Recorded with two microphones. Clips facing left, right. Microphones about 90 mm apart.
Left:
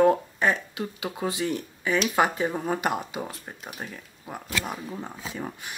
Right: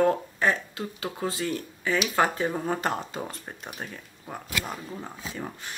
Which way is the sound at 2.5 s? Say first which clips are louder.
Left 1 dB; 5° left (ahead or behind).